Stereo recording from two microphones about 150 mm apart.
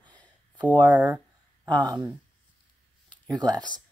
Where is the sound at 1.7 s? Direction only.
30° right (ahead or behind).